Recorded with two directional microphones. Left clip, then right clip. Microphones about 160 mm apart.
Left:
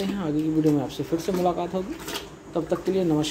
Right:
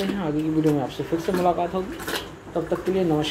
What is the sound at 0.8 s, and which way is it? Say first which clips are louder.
Speech: right 1 dB; 25° left (ahead or behind).